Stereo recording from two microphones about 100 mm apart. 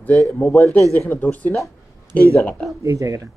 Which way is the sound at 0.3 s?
15° left (ahead or behind).